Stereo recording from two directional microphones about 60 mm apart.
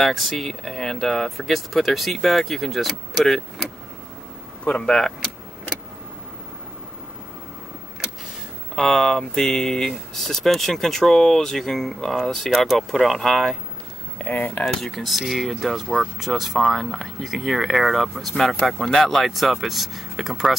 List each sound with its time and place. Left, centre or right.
0.0 s speech: centre
4.6 s speech: centre
8.7 s speech: centre
14.1 s speech: left
14.6 s speech: centre